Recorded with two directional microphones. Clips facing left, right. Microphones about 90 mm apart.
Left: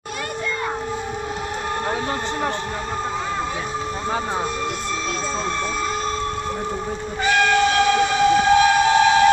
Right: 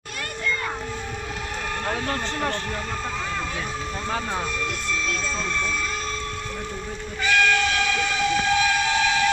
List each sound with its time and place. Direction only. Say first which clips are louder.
1.9 s speech: left 3 dB; 20° left (ahead or behind)
7.2 s train: left 4 dB; 30° left (ahead or behind)